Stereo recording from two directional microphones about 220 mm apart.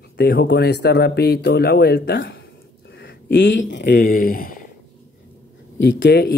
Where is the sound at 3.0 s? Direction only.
55° left (ahead or behind).